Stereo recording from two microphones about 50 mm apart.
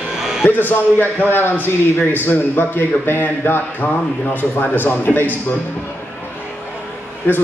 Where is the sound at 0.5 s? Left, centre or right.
Left.